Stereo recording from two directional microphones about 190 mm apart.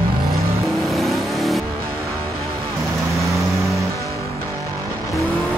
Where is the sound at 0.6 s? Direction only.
Centre (ahead or behind).